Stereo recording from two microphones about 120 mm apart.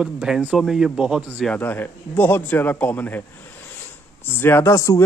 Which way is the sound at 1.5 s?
15° left (ahead or behind).